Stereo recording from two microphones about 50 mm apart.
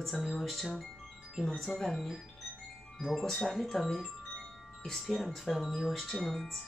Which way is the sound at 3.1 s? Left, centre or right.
Centre.